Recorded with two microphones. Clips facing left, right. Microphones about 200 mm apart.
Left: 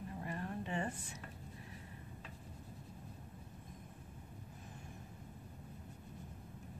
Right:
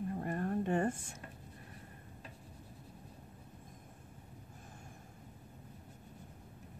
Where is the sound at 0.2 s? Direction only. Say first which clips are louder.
Right 6 dB; 50° right (ahead or behind).